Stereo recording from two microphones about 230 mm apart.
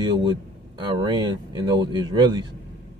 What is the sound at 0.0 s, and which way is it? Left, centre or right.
Speech, centre.